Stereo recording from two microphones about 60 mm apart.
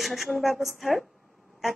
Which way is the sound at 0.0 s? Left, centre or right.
Centre.